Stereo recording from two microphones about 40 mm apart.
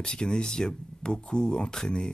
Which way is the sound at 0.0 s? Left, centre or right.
Left.